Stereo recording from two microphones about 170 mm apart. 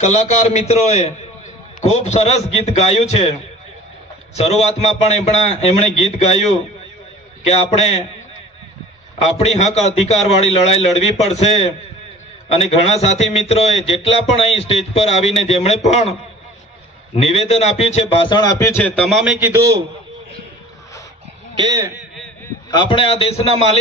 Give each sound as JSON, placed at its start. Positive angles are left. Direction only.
{"t": 0.0, "sound": "a man's voice", "side_deg": 40}
{"t": 4.4, "sound": "a man's voice", "side_deg": 40}
{"t": 9.2, "sound": "a man's voice", "side_deg": 40}
{"t": 21.5, "sound": "a man's voice", "side_deg": -20}
{"t": 22.7, "sound": "a man's voice", "side_deg": 25}